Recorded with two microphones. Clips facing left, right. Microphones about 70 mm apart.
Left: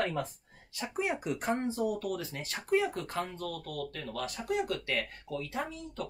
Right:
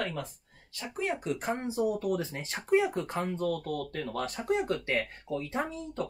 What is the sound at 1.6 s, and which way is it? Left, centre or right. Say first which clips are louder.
Speech: right 3 dB; centre.